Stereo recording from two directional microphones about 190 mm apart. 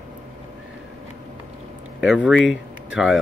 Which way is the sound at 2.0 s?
5° right (ahead or behind).